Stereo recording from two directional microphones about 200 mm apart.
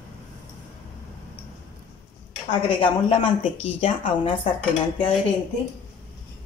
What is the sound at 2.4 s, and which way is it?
A woman's voice, 25° left (ahead or behind).